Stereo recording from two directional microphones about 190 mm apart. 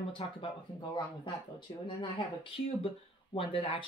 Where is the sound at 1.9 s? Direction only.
30° left (ahead or behind).